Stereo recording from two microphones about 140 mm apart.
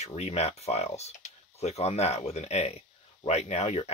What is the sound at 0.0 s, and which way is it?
Speech, 50° left (ahead or behind).